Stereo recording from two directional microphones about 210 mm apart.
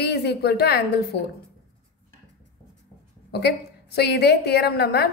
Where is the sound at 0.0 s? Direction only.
50° left (ahead or behind).